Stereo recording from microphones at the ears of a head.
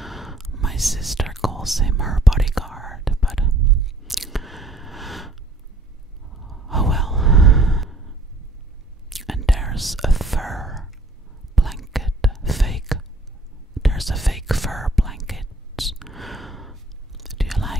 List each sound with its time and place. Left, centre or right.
0.0 s whispering: centre
3.4 s whispering: right
4.0 s a sound: centre
6.3 s sigh: centre
9.1 s whispering: centre
13.7 s whispering: centre